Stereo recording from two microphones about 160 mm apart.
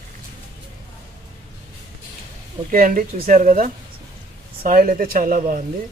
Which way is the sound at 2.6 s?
60° right (ahead or behind).